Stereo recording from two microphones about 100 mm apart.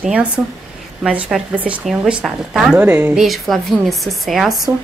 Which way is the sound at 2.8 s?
20° right (ahead or behind).